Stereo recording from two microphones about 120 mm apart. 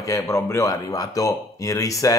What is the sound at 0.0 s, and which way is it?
Speech, 25° left (ahead or behind).